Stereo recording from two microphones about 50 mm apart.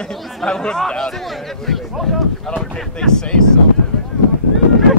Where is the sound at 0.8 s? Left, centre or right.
Centre.